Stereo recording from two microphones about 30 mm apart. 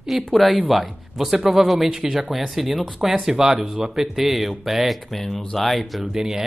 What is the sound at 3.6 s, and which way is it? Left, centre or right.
Speech, right.